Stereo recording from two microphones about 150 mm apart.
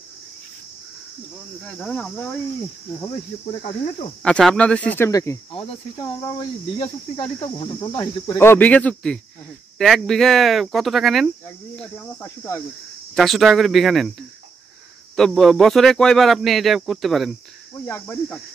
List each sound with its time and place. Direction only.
1.6 s speech: 5° left (ahead or behind)
3.6 s speech: 50° left (ahead or behind)
4.2 s speech: 5° left (ahead or behind)
5.5 s speech: 35° left (ahead or behind)
8.4 s speech: 15° left (ahead or behind)
13.1 s speech: centre (ahead or behind)
15.1 s speech: centre (ahead or behind)
17.8 s speech: 15° left (ahead or behind)